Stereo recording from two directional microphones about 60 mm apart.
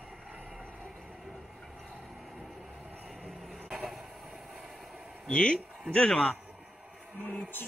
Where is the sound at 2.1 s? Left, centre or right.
Centre.